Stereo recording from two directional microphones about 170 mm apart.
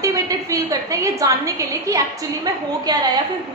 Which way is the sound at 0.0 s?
20° right (ahead or behind).